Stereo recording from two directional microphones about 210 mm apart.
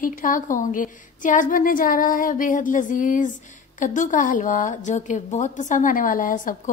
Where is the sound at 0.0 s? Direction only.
40° left (ahead or behind).